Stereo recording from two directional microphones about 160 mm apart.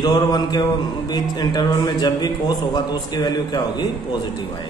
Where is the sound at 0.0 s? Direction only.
25° left (ahead or behind).